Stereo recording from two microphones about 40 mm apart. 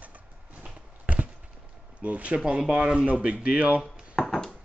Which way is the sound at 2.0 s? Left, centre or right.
Right.